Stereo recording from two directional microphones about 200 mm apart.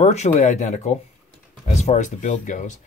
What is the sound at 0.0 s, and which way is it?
Speech, 35° left (ahead or behind).